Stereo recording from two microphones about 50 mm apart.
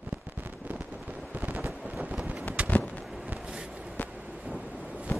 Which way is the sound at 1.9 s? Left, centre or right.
Right.